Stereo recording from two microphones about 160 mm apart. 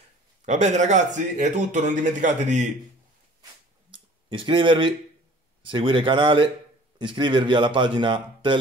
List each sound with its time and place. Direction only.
0.5 s speech: 50° right (ahead or behind)
3.9 s a sound: 30° right (ahead or behind)
5.6 s speech: 30° right (ahead or behind)